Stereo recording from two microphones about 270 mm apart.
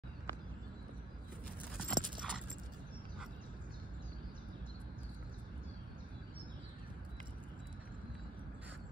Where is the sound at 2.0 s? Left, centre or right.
Right.